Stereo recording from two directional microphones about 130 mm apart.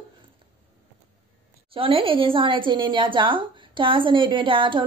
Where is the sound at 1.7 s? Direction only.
45° right (ahead or behind).